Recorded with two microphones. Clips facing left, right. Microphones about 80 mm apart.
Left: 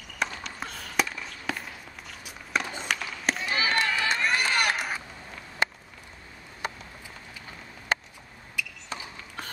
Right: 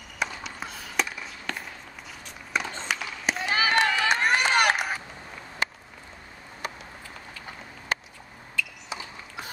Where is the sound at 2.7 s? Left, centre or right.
Centre.